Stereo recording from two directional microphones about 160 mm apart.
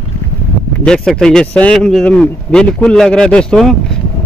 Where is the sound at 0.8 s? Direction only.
5° left (ahead or behind).